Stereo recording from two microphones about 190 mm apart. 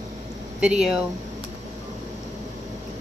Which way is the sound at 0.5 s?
5° right (ahead or behind).